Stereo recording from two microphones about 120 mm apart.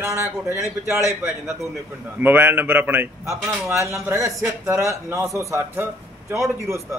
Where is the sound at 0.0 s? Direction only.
20° right (ahead or behind).